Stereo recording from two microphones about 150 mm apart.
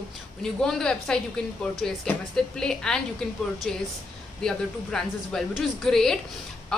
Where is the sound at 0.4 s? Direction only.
5° left (ahead or behind).